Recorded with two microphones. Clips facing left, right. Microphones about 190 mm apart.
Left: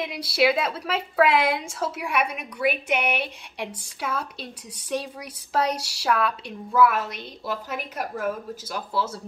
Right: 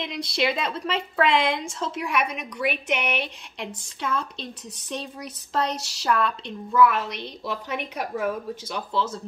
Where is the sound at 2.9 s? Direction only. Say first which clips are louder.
Left 1 dB; 55° left (ahead or behind).